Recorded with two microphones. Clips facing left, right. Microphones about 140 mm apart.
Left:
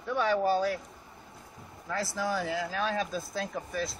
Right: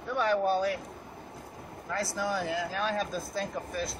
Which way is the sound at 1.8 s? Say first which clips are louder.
Even; centre (ahead or behind).